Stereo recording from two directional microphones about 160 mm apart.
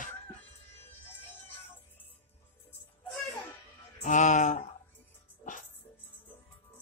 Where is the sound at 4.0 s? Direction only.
50° left (ahead or behind).